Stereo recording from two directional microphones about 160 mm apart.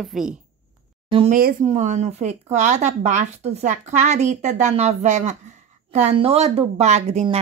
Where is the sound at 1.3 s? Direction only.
55° right (ahead or behind).